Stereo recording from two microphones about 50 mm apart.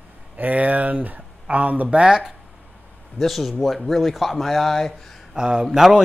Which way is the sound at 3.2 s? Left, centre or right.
Centre.